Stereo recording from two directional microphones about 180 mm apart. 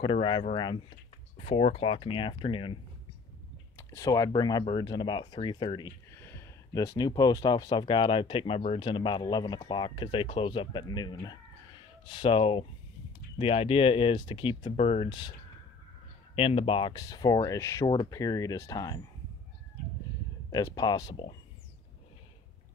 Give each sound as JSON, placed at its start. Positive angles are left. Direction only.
{"t": 0.0, "sound": "speech", "side_deg": 30}
{"t": 3.7, "sound": "speech", "side_deg": 20}
{"t": 16.3, "sound": "speech", "side_deg": 30}
{"t": 20.5, "sound": "speech", "side_deg": 20}